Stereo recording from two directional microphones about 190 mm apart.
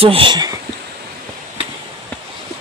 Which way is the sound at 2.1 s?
10° left (ahead or behind).